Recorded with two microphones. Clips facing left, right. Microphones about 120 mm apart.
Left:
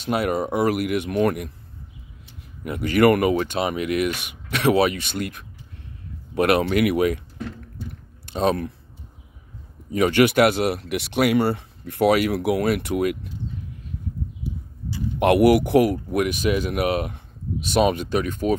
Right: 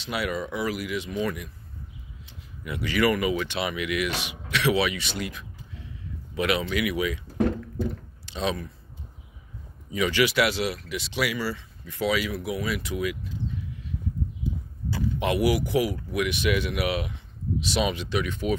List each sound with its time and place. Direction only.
0.0 s speech: 50° left (ahead or behind)
2.6 s speech: 45° left (ahead or behind)
7.3 s a sound: 60° right (ahead or behind)
8.3 s speech: 50° left (ahead or behind)
9.9 s speech: 50° left (ahead or behind)
15.1 s speech: 60° left (ahead or behind)